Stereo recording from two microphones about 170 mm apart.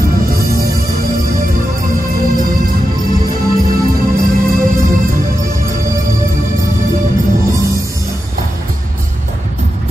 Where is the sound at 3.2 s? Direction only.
60° right (ahead or behind).